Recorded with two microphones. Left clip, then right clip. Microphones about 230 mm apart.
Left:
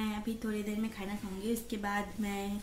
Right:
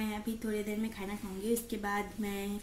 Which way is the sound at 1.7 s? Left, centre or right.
Centre.